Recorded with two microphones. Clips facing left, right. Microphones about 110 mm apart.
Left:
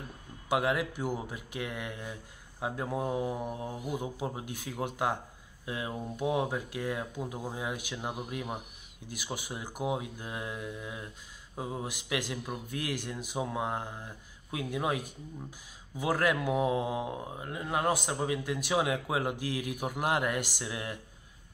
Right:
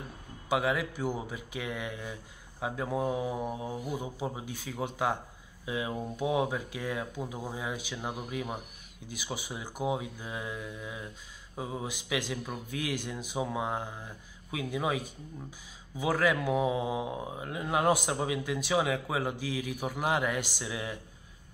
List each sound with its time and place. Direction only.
0.5 s speech: 5° left (ahead or behind)
3.7 s mantra: 15° left (ahead or behind)
4.0 s speech: centre (ahead or behind)
9.1 s speech: 5° left (ahead or behind)
12.7 s speech: centre (ahead or behind)
16.0 s speech: 5° left (ahead or behind)